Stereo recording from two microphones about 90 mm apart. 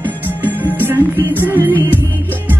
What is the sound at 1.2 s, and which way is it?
Music, 25° right (ahead or behind).